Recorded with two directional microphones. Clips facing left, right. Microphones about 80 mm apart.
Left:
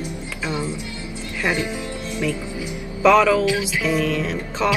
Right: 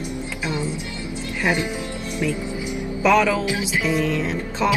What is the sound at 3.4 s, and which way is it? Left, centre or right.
Speech, right.